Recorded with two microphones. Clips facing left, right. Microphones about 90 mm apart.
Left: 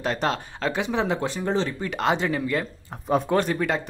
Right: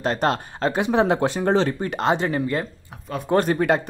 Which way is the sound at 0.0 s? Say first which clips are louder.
Right 3 dB; 40° right (ahead or behind).